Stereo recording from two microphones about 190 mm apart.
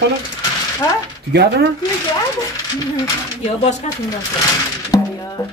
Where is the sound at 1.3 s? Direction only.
60° right (ahead or behind).